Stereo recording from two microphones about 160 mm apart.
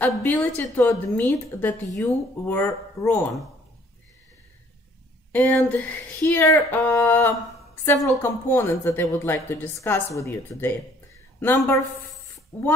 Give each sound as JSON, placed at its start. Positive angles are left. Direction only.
{"t": 0.2, "sound": "speech", "side_deg": 15}
{"t": 5.3, "sound": "speech", "side_deg": 10}